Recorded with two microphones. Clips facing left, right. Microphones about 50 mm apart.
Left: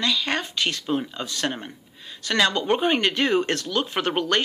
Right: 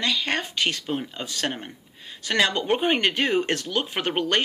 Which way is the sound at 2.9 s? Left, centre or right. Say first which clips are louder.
Left 1 dB; right.